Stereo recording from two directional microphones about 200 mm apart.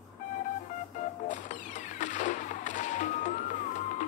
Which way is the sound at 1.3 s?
40° left (ahead or behind).